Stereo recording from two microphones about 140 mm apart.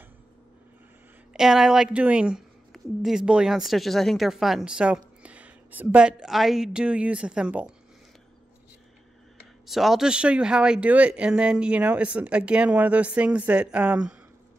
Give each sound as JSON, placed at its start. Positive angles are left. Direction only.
{"t": 1.3, "sound": "speech", "side_deg": -5}
{"t": 9.7, "sound": "speech", "side_deg": 0}